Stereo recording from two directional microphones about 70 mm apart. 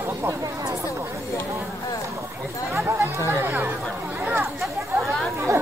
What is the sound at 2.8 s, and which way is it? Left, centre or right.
Speech, right.